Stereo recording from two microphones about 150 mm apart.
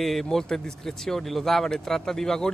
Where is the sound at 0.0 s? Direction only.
Centre (ahead or behind).